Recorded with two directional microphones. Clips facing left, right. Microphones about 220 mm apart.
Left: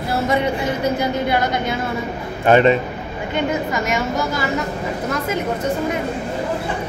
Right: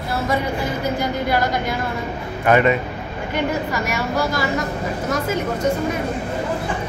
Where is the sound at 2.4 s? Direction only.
30° left (ahead or behind).